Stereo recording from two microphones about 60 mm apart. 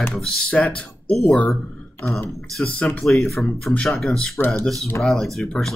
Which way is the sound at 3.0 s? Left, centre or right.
Centre.